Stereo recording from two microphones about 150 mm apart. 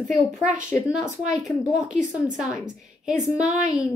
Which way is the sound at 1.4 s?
5° right (ahead or behind).